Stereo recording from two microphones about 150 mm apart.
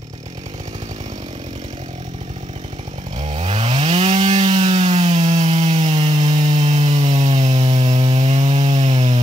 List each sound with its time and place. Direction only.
3.2 s chainsaw: 50° right (ahead or behind)
7.9 s wood: 30° right (ahead or behind)
8.2 s wood: 50° right (ahead or behind)